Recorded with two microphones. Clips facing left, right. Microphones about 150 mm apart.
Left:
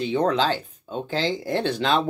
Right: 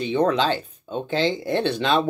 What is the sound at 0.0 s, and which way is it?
Speech, 20° right (ahead or behind).